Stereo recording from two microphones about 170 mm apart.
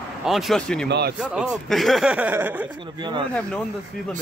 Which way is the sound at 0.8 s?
80° right.